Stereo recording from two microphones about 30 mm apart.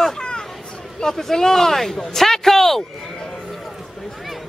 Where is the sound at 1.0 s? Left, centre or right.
Centre.